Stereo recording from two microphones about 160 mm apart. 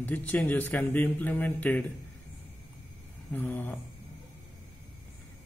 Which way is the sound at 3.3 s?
10° left (ahead or behind).